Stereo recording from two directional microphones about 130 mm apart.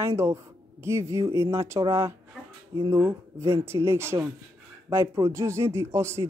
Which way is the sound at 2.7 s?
30° right (ahead or behind).